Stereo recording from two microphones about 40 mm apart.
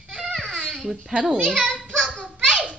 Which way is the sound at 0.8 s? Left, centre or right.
Centre.